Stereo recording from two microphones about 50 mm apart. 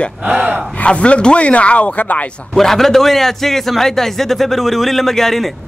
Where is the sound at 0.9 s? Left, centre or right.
Left.